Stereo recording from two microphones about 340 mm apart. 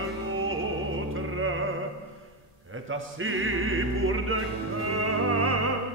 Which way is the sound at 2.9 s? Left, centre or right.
Right.